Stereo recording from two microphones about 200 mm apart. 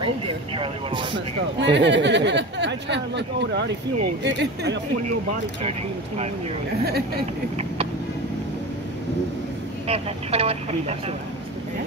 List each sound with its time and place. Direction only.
1.6 s speech: 60° right (ahead or behind)
7.5 s vehicle: 30° right (ahead or behind)
9.8 s speech: 30° right (ahead or behind)